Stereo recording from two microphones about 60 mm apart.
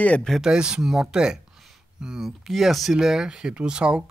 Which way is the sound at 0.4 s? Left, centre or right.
Centre.